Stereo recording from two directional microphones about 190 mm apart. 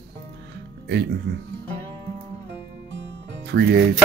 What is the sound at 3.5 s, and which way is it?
Speech, 60° right (ahead or behind).